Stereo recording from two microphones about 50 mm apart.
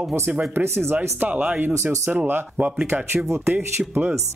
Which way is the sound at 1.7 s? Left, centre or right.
Right.